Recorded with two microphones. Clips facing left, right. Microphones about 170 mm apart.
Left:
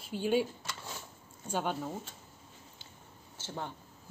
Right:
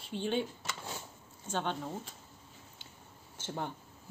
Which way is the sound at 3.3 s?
15° right (ahead or behind).